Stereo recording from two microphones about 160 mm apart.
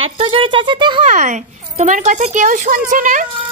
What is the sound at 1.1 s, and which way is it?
A woman's voice, 50° right (ahead or behind).